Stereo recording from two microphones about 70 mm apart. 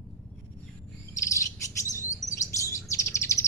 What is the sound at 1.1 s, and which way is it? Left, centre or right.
Bird, left.